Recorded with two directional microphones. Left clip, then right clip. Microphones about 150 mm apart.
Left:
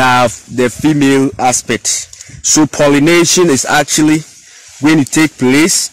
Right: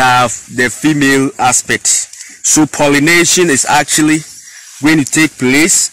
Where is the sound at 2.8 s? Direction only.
90° left.